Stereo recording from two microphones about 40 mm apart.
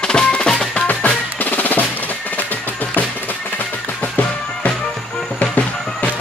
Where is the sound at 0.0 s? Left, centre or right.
Left.